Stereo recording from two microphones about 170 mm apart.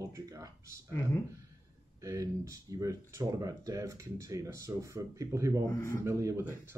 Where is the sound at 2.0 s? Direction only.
20° right (ahead or behind).